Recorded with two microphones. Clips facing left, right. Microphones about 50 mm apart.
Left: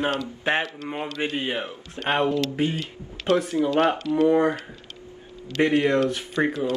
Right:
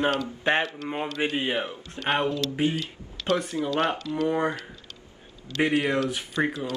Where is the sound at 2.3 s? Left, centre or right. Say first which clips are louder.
Left 2 dB; left.